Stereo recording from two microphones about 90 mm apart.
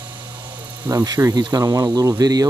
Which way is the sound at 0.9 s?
45° right (ahead or behind).